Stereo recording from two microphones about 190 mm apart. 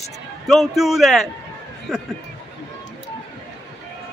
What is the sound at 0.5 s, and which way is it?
A man's voice, centre (ahead or behind).